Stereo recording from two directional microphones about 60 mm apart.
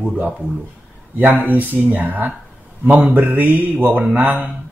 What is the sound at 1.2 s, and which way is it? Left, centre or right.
Speech, right.